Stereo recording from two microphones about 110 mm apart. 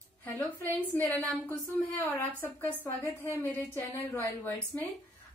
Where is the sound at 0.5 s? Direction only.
15° left (ahead or behind).